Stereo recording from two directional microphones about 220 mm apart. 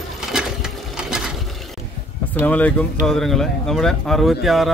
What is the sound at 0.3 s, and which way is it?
Sewing machine, 5° right (ahead or behind).